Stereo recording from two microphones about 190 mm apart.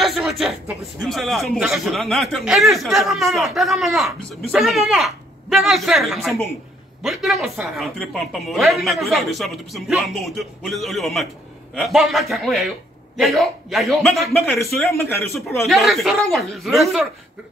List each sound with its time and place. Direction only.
0.0 s a sound: centre (ahead or behind)
1.0 s a woman's voice: centre (ahead or behind)
15.6 s a woman's voice: centre (ahead or behind)